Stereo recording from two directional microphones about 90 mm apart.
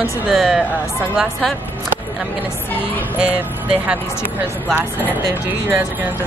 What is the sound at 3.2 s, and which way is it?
Speech, 20° right (ahead or behind).